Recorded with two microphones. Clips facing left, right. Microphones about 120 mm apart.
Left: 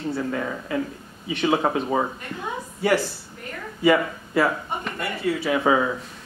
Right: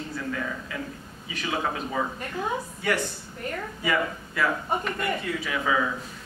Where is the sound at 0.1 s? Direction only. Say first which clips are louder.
Left 5 dB; 35° left (ahead or behind).